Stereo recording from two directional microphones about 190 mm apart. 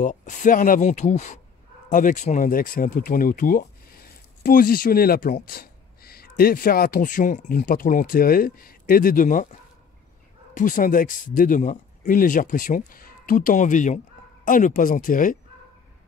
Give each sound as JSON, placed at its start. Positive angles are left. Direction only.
{"t": 0.0, "sound": "speech", "side_deg": 40}